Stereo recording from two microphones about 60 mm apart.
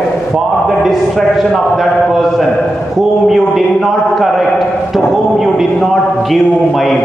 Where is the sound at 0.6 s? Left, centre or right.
Centre.